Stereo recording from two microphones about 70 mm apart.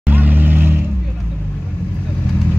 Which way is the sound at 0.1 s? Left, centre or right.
Right.